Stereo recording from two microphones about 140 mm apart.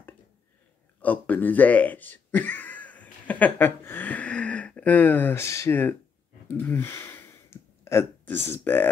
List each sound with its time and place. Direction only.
1.0 s speech: 10° left (ahead or behind)